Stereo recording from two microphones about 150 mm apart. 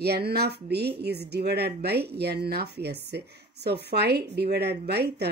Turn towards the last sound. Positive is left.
turn(degrees=-90)